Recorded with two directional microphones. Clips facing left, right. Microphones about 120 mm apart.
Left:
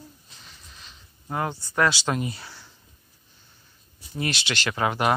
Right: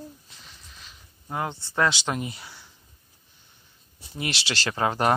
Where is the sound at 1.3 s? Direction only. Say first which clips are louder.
Left 1 dB; 25° right (ahead or behind).